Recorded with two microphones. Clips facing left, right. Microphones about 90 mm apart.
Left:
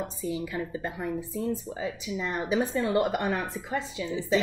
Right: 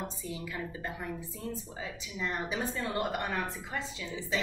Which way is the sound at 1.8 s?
15° left (ahead or behind).